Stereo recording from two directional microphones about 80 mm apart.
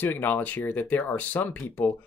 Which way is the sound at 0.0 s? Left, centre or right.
Left.